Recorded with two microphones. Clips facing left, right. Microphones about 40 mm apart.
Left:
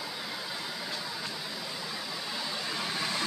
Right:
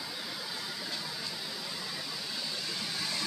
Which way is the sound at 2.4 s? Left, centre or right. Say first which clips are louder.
Left 4 dB; left.